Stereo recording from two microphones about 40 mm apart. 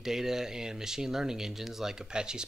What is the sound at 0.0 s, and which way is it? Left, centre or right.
Speech, centre.